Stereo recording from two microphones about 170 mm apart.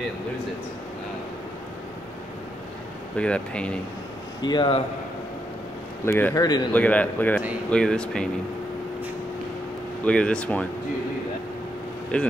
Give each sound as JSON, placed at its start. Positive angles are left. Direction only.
{"t": 3.2, "sound": "a man's voice", "side_deg": 5}
{"t": 4.4, "sound": "speech", "side_deg": 25}
{"t": 6.0, "sound": "a man's voice", "side_deg": 15}
{"t": 6.7, "sound": "a man's voice", "side_deg": 10}
{"t": 10.0, "sound": "a man's voice", "side_deg": 5}
{"t": 12.1, "sound": "a man's voice", "side_deg": 5}